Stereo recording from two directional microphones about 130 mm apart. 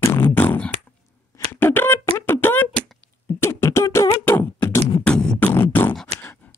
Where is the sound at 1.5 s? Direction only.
15° left (ahead or behind).